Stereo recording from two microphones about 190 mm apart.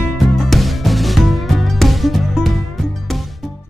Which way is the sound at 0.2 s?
Centre (ahead or behind).